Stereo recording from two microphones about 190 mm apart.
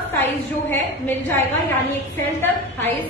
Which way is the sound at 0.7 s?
10° left (ahead or behind).